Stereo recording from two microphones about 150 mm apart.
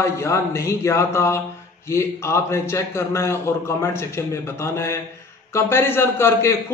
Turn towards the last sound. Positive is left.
turn(degrees=15)  # may be behind; listen again after turning